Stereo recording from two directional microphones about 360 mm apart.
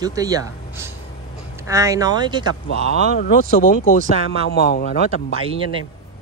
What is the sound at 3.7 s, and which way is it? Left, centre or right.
A man's voice, left.